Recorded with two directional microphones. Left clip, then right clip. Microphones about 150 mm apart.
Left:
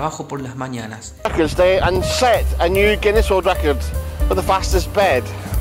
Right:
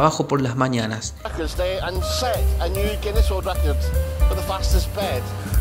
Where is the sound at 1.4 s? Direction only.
10° left (ahead or behind).